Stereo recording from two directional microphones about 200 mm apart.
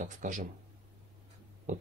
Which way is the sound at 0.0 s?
40° right (ahead or behind).